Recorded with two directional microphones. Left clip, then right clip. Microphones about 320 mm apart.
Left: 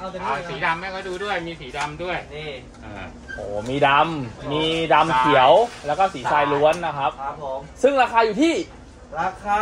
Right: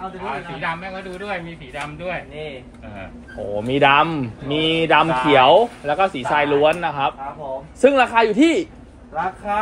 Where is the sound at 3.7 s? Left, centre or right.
Right.